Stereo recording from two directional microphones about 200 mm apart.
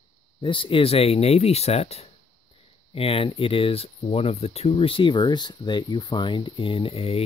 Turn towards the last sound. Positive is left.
turn(degrees=30)  # may be behind; listen again after turning